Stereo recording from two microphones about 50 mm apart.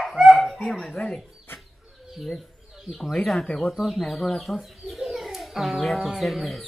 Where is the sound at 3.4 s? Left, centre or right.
Left.